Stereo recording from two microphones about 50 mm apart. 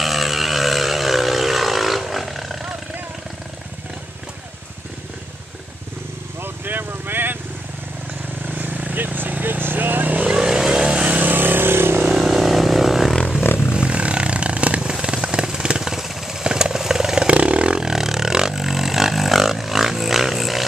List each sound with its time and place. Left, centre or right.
0.0 s vehicle: centre
6.4 s vehicle: right
8.5 s vehicle: right
10.2 s vehicle: centre
11.1 s vehicle: right
12.0 s vehicle: centre
13.4 s vehicle: left
13.7 s a sound: right
15.9 s vehicle: centre
17.3 s a sound: right; by 20.6 s centre